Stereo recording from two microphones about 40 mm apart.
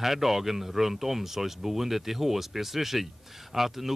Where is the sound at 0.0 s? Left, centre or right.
Centre.